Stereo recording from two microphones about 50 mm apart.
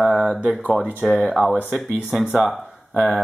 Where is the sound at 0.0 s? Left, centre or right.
Centre.